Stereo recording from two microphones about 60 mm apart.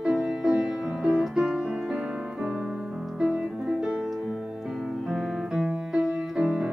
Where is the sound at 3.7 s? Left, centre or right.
Centre.